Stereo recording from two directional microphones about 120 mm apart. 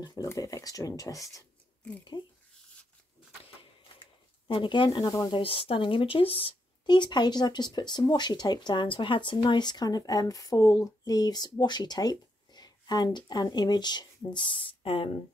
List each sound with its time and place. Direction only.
0.0 s speech: 30° left (ahead or behind)
3.9 s a sound: 45° left (ahead or behind)
5.1 s speech: 35° left (ahead or behind)
5.4 s speech: 50° left (ahead or behind)